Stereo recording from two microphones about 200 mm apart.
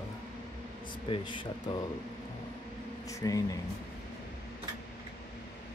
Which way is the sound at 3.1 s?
15° left (ahead or behind).